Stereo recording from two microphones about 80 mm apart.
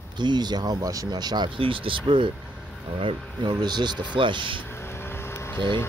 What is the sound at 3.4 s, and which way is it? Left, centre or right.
Speech, right.